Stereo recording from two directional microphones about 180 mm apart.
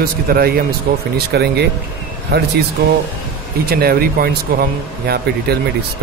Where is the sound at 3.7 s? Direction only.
55° right (ahead or behind).